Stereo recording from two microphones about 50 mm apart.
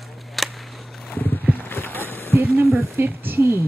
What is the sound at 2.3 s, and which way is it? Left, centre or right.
Speech, right.